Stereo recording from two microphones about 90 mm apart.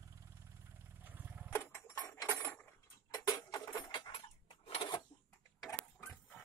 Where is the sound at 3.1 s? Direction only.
45° left (ahead or behind).